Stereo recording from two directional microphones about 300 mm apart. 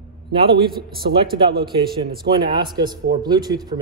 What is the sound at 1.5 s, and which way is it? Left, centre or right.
Speech, right.